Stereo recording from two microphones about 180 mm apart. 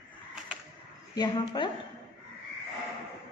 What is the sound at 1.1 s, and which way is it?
Speech, 25° left (ahead or behind).